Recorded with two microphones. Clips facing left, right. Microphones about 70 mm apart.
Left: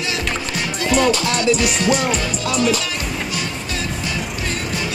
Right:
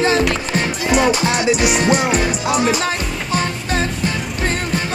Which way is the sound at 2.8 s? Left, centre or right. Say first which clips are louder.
Right 3 dB; right.